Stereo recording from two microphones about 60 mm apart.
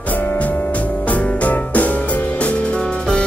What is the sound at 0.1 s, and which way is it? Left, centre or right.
Music, left.